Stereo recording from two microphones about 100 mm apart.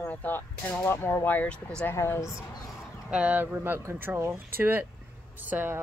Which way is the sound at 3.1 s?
10° right (ahead or behind).